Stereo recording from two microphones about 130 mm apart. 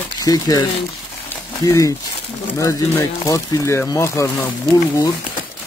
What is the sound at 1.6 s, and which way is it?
Speech, 25° left (ahead or behind).